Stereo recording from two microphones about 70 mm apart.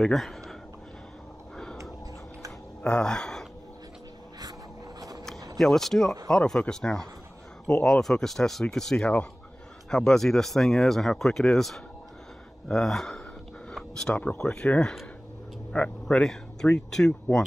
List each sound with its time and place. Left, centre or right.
0.0 s speech: centre
2.8 s speech: centre
5.6 s a man's voice: centre; by 16.2 s left
16.2 s speech: centre